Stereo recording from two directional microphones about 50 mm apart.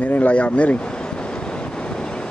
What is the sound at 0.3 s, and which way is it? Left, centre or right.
Speech, left.